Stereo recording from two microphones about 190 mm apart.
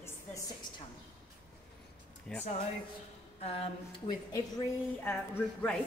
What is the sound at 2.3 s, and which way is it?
Speech, 5° left (ahead or behind).